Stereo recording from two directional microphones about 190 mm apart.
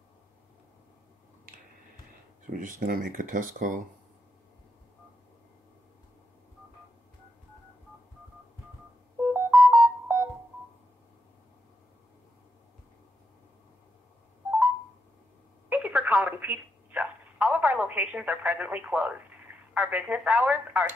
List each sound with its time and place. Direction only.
2.8 s speech: 45° right (ahead or behind)
9.2 s music: 5° right (ahead or behind)
15.7 s telephone: 10° right (ahead or behind)